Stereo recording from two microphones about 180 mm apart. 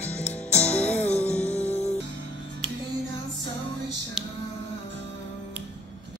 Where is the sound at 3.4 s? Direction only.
85° right.